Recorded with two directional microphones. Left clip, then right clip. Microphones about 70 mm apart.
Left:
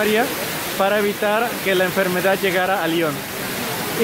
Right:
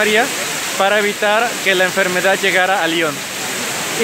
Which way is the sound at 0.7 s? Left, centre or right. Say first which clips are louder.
Right 4 dB; right.